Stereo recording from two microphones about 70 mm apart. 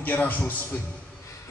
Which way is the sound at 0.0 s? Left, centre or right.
Left.